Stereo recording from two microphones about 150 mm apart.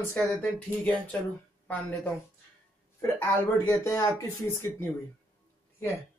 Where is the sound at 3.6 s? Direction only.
20° left (ahead or behind).